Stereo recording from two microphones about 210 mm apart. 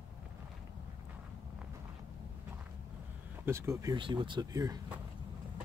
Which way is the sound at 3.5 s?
15° right (ahead or behind).